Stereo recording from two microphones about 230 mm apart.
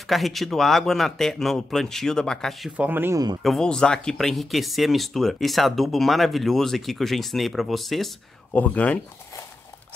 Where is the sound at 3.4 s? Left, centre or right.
Centre.